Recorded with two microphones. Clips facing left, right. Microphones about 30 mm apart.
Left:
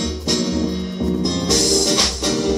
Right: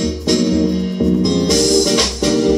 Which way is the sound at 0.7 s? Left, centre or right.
Centre.